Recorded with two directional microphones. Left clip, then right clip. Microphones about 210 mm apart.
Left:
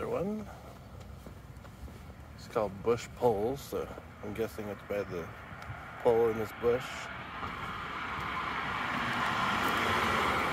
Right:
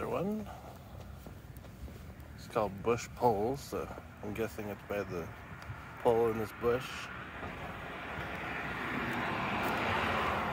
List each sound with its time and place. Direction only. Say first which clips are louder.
0.0 s a sound: left 2 dB; 10° right (ahead or behind)
2.5 s speech: left 2 dB; 5° right (ahead or behind)
7.2 s vehicle: left 4 dB; 55° left (ahead or behind)